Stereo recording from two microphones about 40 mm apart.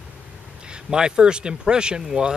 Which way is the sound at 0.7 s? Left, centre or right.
Right.